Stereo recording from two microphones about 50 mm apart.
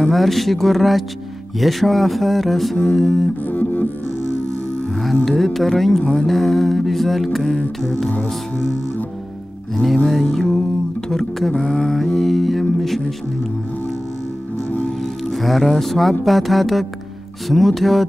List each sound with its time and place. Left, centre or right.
0.0 s music: centre
3.4 s music: left
5.2 s music: centre
7.5 s music: centre
8.1 s music: left
10.3 s music: centre
15.2 s music: centre